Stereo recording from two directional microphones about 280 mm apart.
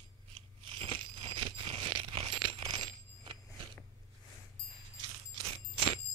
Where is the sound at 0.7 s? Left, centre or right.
Centre.